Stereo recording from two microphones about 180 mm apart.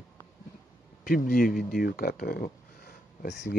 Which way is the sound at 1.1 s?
55° left (ahead or behind).